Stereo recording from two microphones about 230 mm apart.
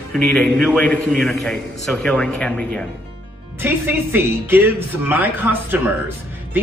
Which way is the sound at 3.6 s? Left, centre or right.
Centre.